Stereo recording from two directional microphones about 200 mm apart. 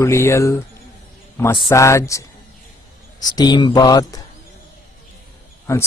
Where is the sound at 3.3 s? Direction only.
20° left (ahead or behind).